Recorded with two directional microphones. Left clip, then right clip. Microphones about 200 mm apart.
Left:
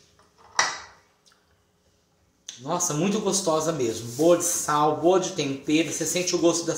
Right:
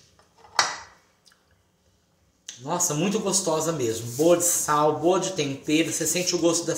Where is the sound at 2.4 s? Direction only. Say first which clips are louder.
Even; 10° right (ahead or behind).